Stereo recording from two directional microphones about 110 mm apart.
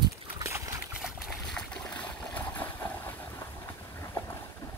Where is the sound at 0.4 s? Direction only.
25° right (ahead or behind).